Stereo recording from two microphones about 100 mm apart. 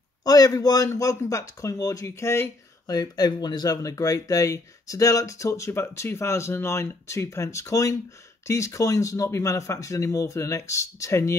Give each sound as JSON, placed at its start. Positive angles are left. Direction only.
{"t": 0.2, "sound": "speech", "side_deg": 40}
{"t": 2.9, "sound": "speech", "side_deg": 40}